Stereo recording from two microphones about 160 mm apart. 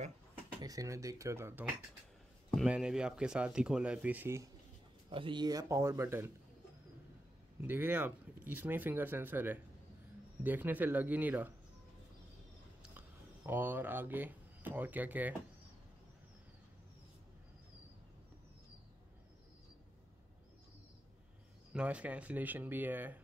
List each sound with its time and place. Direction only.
0.6 s speech: 20° right (ahead or behind)
2.5 s speech: 5° right (ahead or behind)
5.1 s speech: 30° right (ahead or behind)
7.6 s speech: 10° right (ahead or behind)
13.5 s speech: 10° right (ahead or behind)
21.7 s speech: 10° right (ahead or behind)